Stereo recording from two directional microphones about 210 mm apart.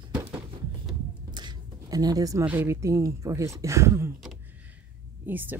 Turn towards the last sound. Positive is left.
turn(degrees=-10)  # may be behind; listen again after turning